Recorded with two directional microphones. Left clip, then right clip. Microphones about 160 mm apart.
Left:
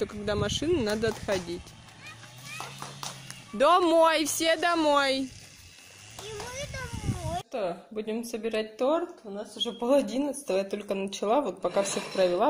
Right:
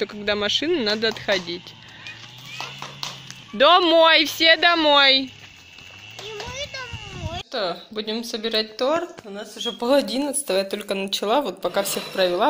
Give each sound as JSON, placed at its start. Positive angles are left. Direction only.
{"t": 0.2, "sound": "speech", "side_deg": 10}
{"t": 3.5, "sound": "speech", "side_deg": 10}
{"t": 6.2, "sound": "a sound", "side_deg": 30}
{"t": 7.5, "sound": "speech", "side_deg": 0}